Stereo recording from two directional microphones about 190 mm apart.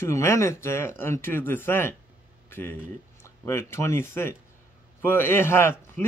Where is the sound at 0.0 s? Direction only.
15° left (ahead or behind).